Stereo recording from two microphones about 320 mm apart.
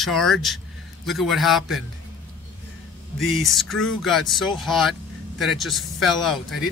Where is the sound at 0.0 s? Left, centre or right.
Centre.